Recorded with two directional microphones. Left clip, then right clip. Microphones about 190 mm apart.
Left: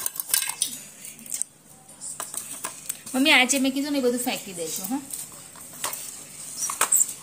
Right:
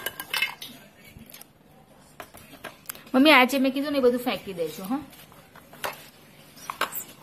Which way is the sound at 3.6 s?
Centre (ahead or behind).